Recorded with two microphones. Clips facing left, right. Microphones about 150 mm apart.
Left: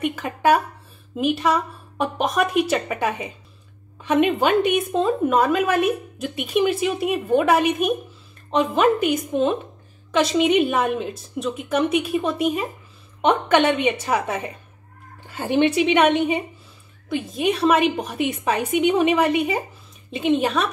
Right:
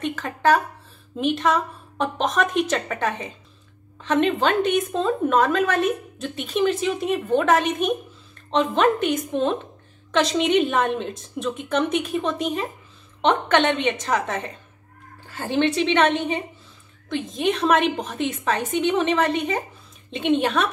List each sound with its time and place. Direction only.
0.0 s a woman's voice: 10° left (ahead or behind)